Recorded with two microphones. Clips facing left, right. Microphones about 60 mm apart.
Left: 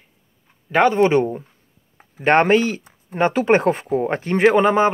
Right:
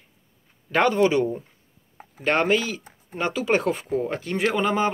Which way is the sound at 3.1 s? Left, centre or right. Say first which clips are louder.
Left 7 dB; left.